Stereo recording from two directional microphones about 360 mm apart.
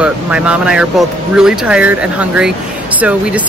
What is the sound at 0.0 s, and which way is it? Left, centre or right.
Speech, centre.